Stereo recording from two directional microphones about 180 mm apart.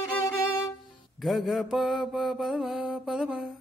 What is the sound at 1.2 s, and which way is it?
Mantra, centre (ahead or behind).